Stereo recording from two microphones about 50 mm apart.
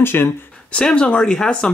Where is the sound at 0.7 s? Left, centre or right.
Left.